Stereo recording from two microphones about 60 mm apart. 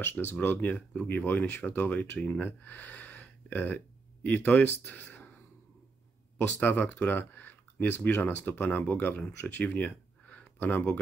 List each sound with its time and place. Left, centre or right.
0.0 s speech: left
4.9 s whispering: left
6.3 s speech: left